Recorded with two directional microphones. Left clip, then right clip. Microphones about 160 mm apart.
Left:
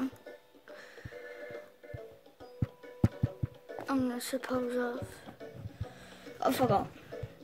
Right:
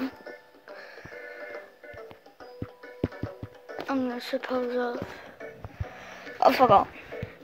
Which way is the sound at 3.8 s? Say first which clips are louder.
Right 4 dB; 25° left (ahead or behind).